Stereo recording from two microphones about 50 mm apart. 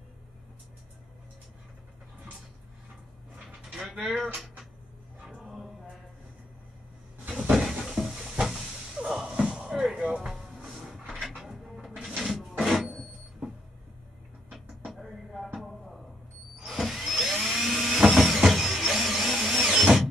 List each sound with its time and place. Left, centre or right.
3.6 s a sound: centre
7.3 s cupboard open or close: centre
9.0 s music: centre
12.2 s printer: centre
14.5 s music: centre
16.5 s power windows: centre
16.8 s a sound: centre
17.6 s vehicle: centre